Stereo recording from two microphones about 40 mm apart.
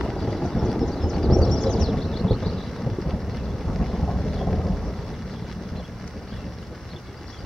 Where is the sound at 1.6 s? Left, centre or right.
Centre.